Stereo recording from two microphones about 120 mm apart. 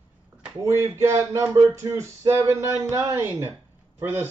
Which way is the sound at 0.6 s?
25° right (ahead or behind).